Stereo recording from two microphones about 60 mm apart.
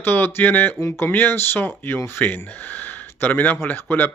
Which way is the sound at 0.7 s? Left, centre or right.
Left.